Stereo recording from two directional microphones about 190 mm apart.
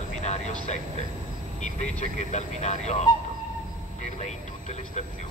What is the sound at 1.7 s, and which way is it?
Speech, 40° left (ahead or behind).